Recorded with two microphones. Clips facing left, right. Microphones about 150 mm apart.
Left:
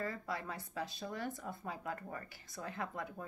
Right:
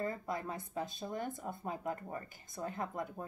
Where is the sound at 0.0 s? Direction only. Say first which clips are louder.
Right 3 dB; 25° right (ahead or behind).